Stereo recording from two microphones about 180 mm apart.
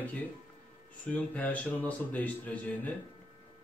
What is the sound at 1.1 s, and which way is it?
Speech, 10° left (ahead or behind).